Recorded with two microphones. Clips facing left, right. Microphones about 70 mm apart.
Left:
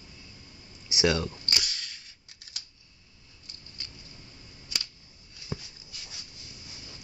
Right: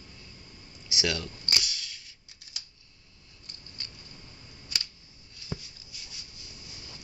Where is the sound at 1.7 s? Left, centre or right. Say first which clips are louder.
Left 1 dB; left.